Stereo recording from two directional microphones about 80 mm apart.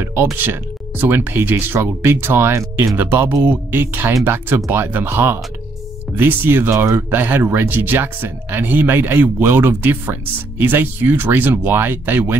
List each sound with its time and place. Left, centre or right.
0.0 s speech: right
3.0 s speech: right